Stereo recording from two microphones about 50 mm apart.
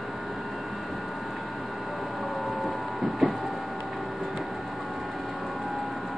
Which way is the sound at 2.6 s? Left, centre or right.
Centre.